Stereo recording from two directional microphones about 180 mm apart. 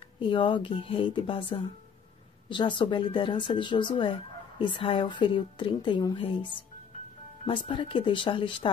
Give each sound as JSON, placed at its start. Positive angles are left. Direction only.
{"t": 0.2, "sound": "speech", "side_deg": 30}